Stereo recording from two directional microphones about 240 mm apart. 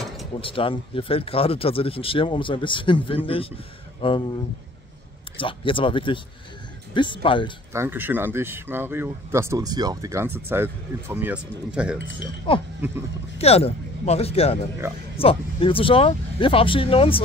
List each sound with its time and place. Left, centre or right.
0.4 s speech: left
5.4 s speech: left
7.7 s speech: centre
12.5 s speech: left